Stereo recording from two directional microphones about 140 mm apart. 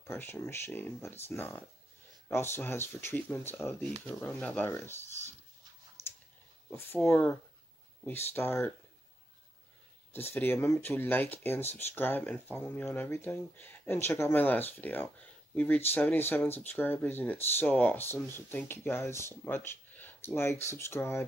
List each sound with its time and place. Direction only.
0.0 s speech: 15° left (ahead or behind)
7.1 s speech: 10° left (ahead or behind)
10.1 s speech: 15° left (ahead or behind)